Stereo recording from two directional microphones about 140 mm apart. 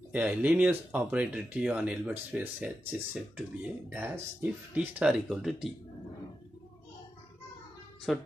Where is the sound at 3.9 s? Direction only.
15° right (ahead or behind).